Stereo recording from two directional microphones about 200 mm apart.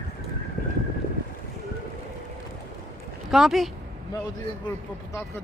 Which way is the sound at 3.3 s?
Centre (ahead or behind).